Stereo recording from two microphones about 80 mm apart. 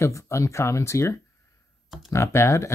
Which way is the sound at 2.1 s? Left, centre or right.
Left.